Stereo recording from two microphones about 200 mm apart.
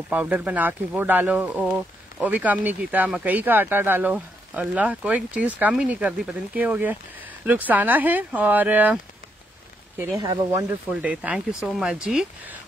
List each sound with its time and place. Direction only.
0.1 s speech: 5° right (ahead or behind)
10.9 s speech: 5° right (ahead or behind)